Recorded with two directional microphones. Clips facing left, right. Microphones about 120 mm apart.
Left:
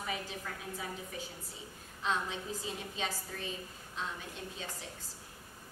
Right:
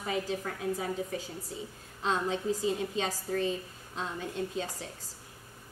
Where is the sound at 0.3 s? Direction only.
40° right (ahead or behind).